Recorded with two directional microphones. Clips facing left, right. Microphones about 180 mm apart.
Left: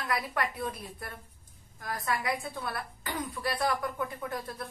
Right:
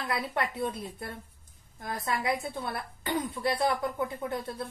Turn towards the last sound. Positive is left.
turn(degrees=-25)  # may be behind; listen again after turning